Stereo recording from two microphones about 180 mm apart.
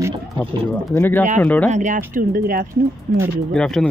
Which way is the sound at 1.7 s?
45° right (ahead or behind).